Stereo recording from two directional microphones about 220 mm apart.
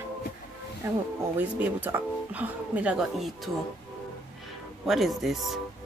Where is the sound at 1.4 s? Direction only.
5° right (ahead or behind).